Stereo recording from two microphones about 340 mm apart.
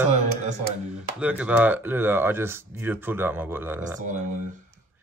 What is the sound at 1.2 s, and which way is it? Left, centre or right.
Speech, centre.